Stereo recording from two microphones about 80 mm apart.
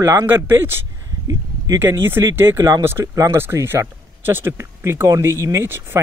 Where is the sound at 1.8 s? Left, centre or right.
Right.